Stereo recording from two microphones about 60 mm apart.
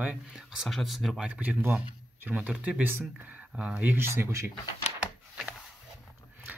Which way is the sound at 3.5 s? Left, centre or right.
Centre.